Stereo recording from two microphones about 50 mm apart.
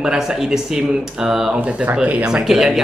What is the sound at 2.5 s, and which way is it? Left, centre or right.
Speech, centre.